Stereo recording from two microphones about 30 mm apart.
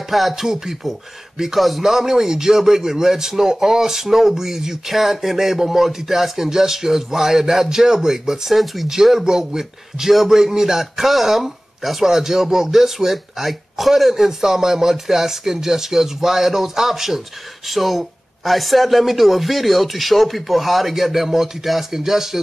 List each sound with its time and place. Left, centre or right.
0.1 s speech: centre